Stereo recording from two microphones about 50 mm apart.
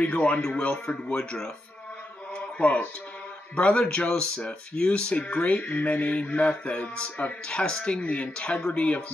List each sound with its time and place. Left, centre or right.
0.0 s speech: left
2.3 s a sound: left
3.5 s speech: left